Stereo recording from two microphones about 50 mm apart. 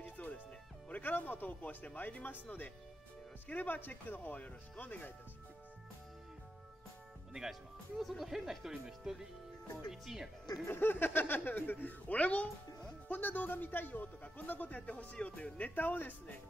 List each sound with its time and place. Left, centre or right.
0.0 s music: left
1.0 s speech: left
3.4 s speech: left
8.0 s speech: centre
10.7 s speech: left
13.1 s speech: left
15.7 s speech: left